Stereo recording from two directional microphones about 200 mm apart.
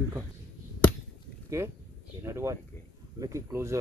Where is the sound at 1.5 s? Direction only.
15° right (ahead or behind).